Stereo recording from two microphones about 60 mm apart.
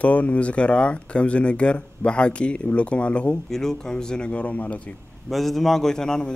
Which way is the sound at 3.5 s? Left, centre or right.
Centre.